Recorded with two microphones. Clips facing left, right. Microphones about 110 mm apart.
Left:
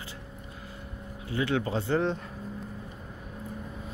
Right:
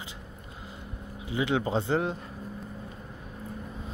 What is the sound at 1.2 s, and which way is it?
Speech, 20° right (ahead or behind).